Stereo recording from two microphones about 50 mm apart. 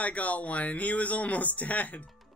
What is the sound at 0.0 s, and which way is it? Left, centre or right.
Speech, left.